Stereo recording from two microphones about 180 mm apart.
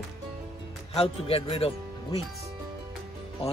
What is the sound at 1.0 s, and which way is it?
Speech, 30° left (ahead or behind).